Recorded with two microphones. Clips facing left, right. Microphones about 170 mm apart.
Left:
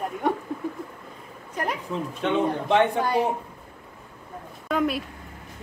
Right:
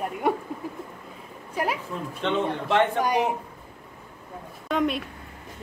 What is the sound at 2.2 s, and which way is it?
Speech, 15° left (ahead or behind).